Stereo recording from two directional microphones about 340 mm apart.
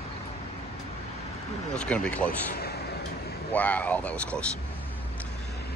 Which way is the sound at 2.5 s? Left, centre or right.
Left.